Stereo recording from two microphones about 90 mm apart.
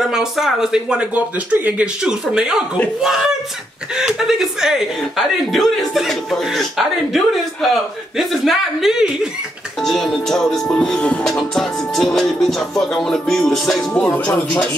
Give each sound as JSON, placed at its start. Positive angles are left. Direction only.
{"t": 0.0, "sound": "speech", "side_deg": -5}
{"t": 3.9, "sound": "speech", "side_deg": -5}
{"t": 13.9, "sound": "speech", "side_deg": 15}